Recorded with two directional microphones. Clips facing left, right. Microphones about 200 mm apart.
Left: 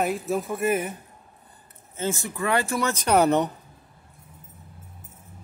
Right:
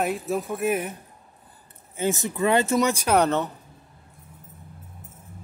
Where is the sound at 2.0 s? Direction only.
20° right (ahead or behind).